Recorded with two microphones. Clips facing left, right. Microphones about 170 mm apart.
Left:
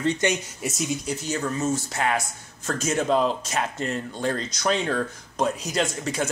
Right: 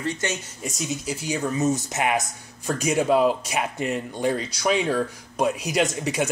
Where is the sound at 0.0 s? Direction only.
20° left (ahead or behind).